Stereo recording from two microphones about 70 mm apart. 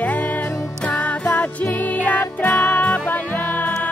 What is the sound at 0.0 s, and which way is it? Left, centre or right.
Music, left.